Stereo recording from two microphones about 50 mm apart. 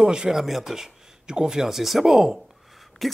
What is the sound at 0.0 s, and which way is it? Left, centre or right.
Speech, centre.